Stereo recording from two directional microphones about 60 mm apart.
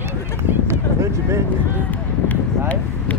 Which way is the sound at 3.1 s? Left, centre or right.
Left.